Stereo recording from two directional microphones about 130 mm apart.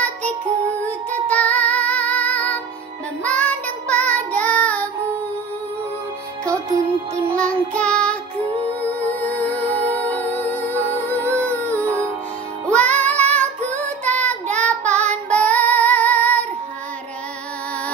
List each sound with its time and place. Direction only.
1.1 s child singing: 10° left (ahead or behind)
7.3 s music: 10° left (ahead or behind)
11.1 s music: 20° right (ahead or behind)
12.6 s music: 10° left (ahead or behind)
13.7 s child singing: 10° left (ahead or behind)